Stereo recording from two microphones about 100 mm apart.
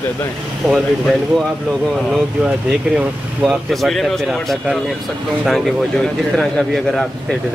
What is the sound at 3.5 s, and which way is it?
Speech, centre (ahead or behind).